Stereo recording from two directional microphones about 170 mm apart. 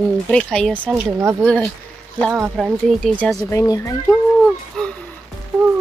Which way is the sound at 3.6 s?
20° left (ahead or behind).